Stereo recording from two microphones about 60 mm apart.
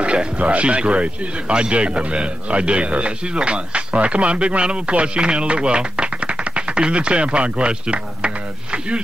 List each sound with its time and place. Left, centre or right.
0.0 s speech: centre